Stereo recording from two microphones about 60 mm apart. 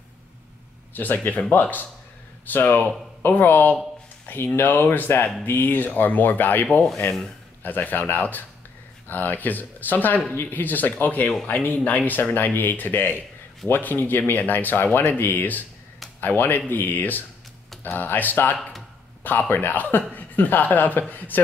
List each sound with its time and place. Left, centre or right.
0.9 s speech: left